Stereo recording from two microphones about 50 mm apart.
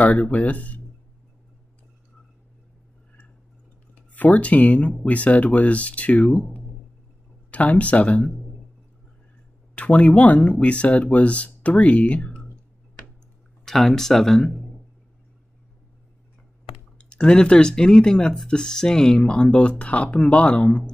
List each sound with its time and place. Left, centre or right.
0.0 s speech: left
3.9 s speech: left
9.8 s speech: left
13.7 s speech: centre
17.0 s speech: centre